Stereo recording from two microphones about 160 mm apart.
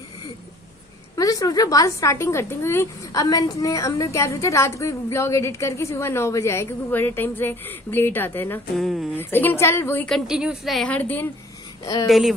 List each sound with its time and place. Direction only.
1.1 s a woman's voice: 20° left (ahead or behind)
8.7 s a woman's voice: centre (ahead or behind)
9.1 s a woman's voice: 10° left (ahead or behind)
10.0 s a woman's voice: centre (ahead or behind); by 12.1 s 20° left (ahead or behind)
12.1 s a woman's voice: centre (ahead or behind)